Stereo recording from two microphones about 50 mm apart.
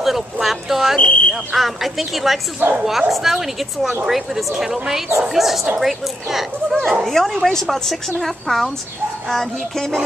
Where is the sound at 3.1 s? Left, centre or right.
Centre.